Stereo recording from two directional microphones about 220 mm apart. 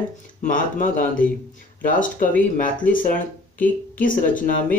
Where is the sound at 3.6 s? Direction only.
40° left (ahead or behind).